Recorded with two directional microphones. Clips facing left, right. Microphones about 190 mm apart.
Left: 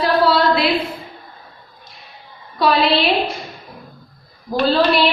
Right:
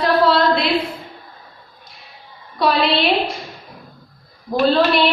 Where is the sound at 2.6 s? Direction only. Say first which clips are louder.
Left 1 dB; centre (ahead or behind).